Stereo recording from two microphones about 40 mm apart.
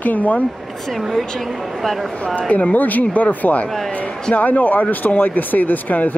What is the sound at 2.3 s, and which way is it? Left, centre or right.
Speech, left.